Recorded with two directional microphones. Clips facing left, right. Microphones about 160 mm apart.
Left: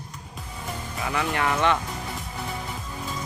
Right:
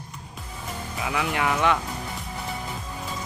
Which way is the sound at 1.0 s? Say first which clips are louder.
Even; 5° right (ahead or behind).